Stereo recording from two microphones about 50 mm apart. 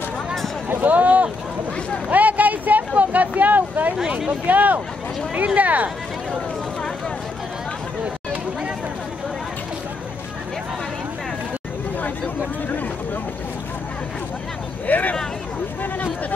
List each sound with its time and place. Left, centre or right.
0.7 s a sound: right
4.0 s speech: centre
4.3 s speech: right
14.9 s vehicle: left